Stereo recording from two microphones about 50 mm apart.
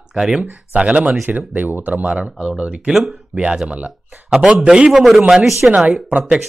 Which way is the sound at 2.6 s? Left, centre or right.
Centre.